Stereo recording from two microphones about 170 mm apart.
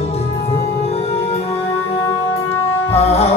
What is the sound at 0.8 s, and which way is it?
Music, 40° left (ahead or behind).